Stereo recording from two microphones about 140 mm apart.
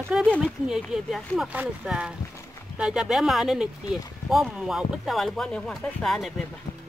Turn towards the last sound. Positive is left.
turn(degrees=0)  # may be behind; listen again after turning